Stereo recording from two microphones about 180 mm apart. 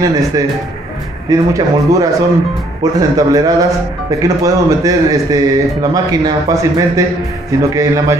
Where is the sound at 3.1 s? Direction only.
20° right (ahead or behind).